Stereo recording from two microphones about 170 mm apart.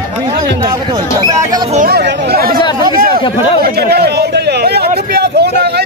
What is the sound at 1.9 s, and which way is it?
Speech, 90° right.